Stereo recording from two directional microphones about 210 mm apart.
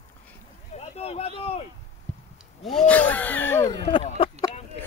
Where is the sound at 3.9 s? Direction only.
25° left (ahead or behind).